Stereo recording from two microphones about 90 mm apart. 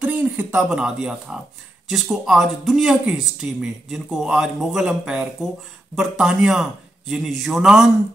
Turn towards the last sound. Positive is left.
turn(degrees=-5)  # may be behind; listen again after turning